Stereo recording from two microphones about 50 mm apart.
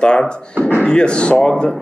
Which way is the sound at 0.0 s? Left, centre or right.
Centre.